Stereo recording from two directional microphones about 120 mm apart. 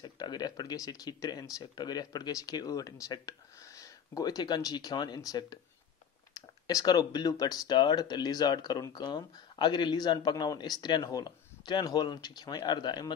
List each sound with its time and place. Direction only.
0.0 s speech: 35° left (ahead or behind)